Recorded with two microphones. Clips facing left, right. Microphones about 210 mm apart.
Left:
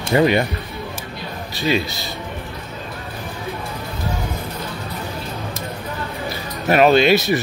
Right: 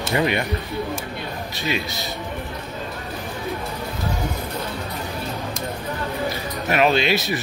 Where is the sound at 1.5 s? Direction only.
30° left (ahead or behind).